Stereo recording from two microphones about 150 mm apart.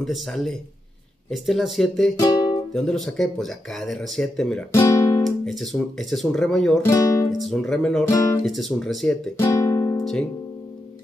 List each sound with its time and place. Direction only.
0.0 s speech: centre (ahead or behind)
2.1 s music: 25° left (ahead or behind)
2.7 s speech: centre (ahead or behind)
4.7 s speech: 20° left (ahead or behind)
5.2 s speech: centre (ahead or behind)
6.8 s speech: 20° left (ahead or behind)
7.3 s speech: centre (ahead or behind)
8.0 s speech: 20° left (ahead or behind)
8.5 s speech: centre (ahead or behind)
9.4 s music: 20° left (ahead or behind)